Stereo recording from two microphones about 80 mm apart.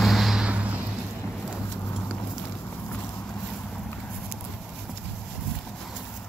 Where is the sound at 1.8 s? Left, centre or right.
Left.